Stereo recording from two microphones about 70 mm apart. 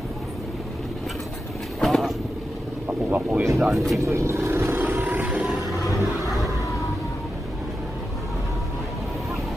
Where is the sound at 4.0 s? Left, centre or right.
Right.